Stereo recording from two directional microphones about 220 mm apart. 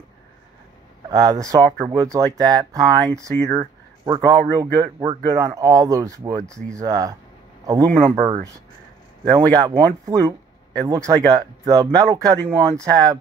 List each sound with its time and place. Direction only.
1.1 s speech: 15° right (ahead or behind)